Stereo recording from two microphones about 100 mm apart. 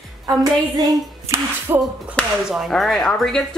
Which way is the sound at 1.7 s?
25° right (ahead or behind).